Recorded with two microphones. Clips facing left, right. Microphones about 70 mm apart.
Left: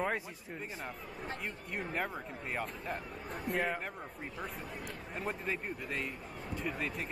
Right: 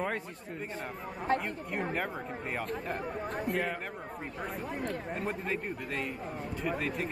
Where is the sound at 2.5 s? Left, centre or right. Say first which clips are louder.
Right 2 dB; centre.